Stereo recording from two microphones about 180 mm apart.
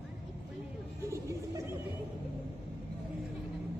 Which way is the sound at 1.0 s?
15° right (ahead or behind).